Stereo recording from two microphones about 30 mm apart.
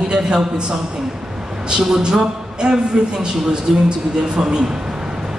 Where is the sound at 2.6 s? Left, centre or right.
Right.